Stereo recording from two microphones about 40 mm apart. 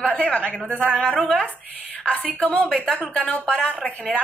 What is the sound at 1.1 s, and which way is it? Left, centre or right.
Speech, centre.